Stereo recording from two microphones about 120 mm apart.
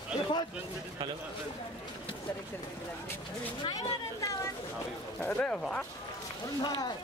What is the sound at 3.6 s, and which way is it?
Speech, 30° left (ahead or behind).